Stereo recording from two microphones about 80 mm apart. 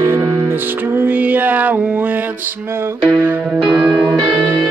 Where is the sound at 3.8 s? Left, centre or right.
Centre.